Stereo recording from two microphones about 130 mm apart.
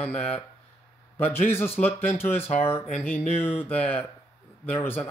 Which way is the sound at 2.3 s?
50° left (ahead or behind).